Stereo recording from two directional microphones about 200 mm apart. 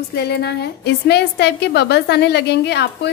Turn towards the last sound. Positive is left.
turn(degrees=55)  # may be behind; listen again after turning